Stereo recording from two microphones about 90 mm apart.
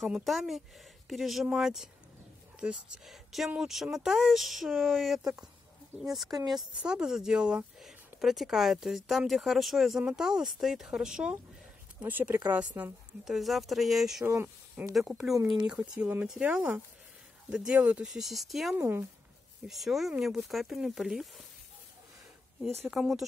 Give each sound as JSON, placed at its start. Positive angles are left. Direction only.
{"t": 0.2, "sound": "speech", "side_deg": 0}
{"t": 12.0, "sound": "speech", "side_deg": -20}
{"t": 13.2, "sound": "speech", "side_deg": 0}
{"t": 14.2, "sound": "speech", "side_deg": -25}
{"t": 15.0, "sound": "speech", "side_deg": 0}
{"t": 18.0, "sound": "speech", "side_deg": -5}
{"t": 18.8, "sound": "speech", "side_deg": -25}
{"t": 19.7, "sound": "speech", "side_deg": 0}
{"t": 22.6, "sound": "speech", "side_deg": -5}